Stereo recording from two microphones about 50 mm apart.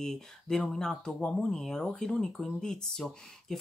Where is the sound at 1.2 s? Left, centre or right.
Left.